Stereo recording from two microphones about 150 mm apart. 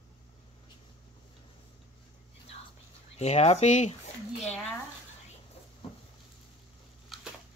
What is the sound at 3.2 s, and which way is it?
Speech, 45° left (ahead or behind).